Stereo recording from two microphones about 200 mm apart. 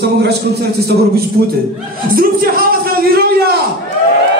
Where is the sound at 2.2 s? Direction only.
45° right (ahead or behind).